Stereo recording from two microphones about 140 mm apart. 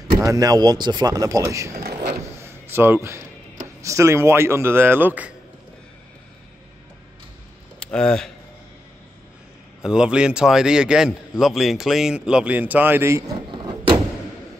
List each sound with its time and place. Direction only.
0.2 s a man's voice: 25° right (ahead or behind)
7.8 s speech: 5° left (ahead or behind)
9.8 s a man's voice: 5° right (ahead or behind)
13.5 s a sound: 35° right (ahead or behind)